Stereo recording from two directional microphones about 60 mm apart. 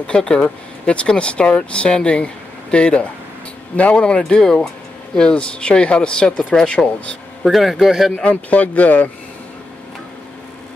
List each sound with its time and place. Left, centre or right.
0.0 s speech: centre
7.4 s speech: centre
8.2 s speech: left